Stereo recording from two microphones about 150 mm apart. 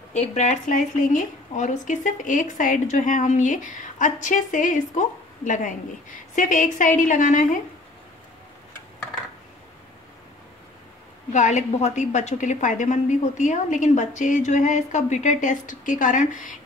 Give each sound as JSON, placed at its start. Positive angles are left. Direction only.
{"t": 0.1, "sound": "a woman's voice", "side_deg": 50}
{"t": 11.3, "sound": "a woman's voice", "side_deg": 50}